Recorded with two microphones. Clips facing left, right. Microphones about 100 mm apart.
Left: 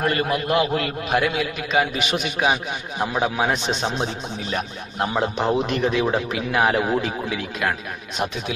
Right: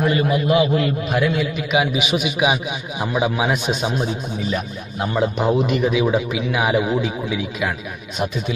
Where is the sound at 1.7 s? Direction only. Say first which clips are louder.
Right 2 dB; 10° right (ahead or behind).